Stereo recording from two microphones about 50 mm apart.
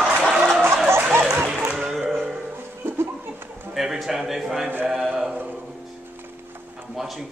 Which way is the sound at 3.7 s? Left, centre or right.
Centre.